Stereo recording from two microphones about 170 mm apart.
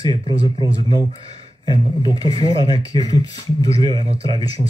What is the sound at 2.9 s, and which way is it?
Speech, 20° left (ahead or behind).